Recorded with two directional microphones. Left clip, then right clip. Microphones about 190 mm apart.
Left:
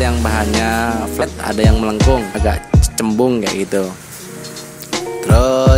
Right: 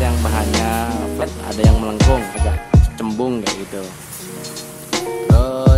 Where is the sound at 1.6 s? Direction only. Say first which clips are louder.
Left 3 dB; 15° left (ahead or behind).